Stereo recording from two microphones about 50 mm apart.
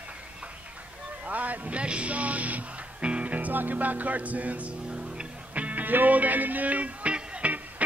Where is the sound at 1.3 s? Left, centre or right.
Right.